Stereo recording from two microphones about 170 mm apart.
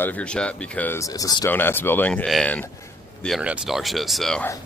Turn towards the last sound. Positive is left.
turn(degrees=5)  # may be behind; listen again after turning